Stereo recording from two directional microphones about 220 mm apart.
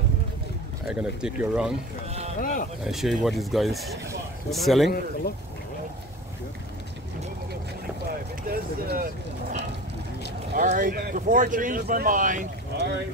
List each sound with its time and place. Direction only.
0.8 s speech: 5° right (ahead or behind)
2.0 s speech: 30° right (ahead or behind)
2.4 s speech: 35° left (ahead or behind)
2.8 s speech: centre (ahead or behind)
8.5 s vehicle: 40° right (ahead or behind)
10.5 s speech: 40° right (ahead or behind)